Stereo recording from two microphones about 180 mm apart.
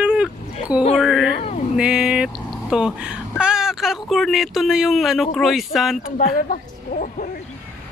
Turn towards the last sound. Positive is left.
turn(degrees=50)  # may be behind; listen again after turning